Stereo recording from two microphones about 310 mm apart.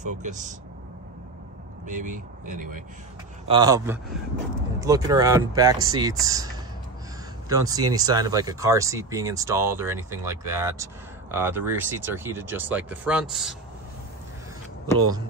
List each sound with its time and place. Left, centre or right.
0.0 s speech: right
1.9 s speech: right
3.4 s speech: centre